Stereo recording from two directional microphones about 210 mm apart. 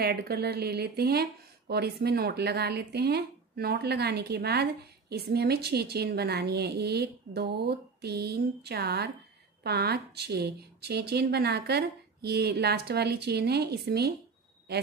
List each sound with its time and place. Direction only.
0.0 s a woman's voice: 45° right (ahead or behind)